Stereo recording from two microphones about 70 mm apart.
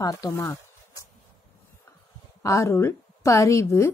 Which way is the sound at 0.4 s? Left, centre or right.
Left.